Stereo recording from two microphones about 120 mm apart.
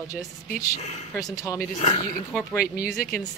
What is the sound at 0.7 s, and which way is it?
Speech, 65° left (ahead or behind).